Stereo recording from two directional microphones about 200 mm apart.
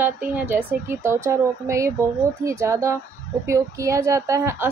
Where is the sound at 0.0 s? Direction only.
10° right (ahead or behind).